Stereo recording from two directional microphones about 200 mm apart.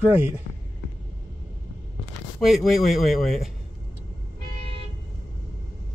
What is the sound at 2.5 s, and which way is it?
Speech, centre (ahead or behind).